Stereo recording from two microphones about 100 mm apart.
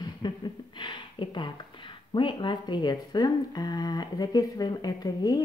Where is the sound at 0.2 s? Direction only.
45° left (ahead or behind).